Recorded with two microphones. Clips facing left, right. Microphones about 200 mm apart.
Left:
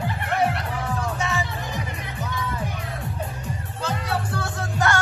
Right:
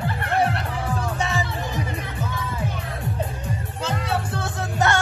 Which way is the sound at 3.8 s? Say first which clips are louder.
Right 1 dB; 25° right (ahead or behind).